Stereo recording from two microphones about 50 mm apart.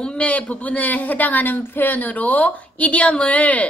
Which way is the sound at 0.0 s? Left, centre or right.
Left.